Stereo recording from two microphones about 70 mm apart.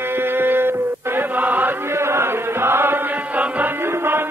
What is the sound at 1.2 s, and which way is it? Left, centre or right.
Chant, right.